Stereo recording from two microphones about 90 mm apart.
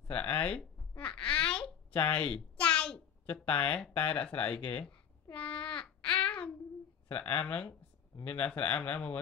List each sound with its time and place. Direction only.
0.1 s babbling: 15° left (ahead or behind)
2.0 s a sound: 15° left (ahead or behind)
3.9 s speech: 15° left (ahead or behind)
5.7 s babbling: 10° left (ahead or behind)
7.1 s speech: 20° left (ahead or behind)